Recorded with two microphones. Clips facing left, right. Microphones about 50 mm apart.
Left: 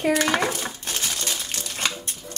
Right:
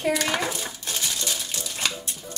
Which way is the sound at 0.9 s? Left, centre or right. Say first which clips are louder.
Even; left.